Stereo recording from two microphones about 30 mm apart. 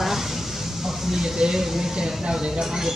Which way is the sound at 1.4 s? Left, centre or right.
Centre.